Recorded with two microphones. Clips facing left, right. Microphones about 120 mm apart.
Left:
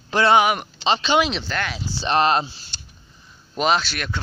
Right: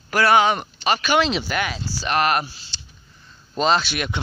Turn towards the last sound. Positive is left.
turn(degrees=-15)  # may be behind; listen again after turning